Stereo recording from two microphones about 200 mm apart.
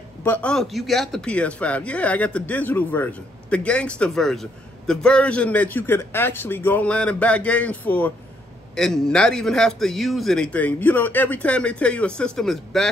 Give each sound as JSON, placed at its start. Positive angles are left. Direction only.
{"t": 0.2, "sound": "a man's voice", "side_deg": 10}